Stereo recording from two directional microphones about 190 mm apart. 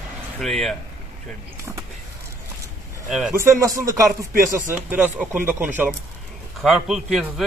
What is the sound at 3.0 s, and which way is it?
Speech, 5° right (ahead or behind).